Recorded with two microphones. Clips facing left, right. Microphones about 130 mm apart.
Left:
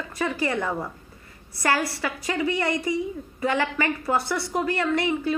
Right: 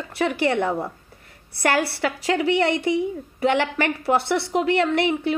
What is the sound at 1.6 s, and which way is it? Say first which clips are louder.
A woman's voice: right 3 dB; 65° right (ahead or behind).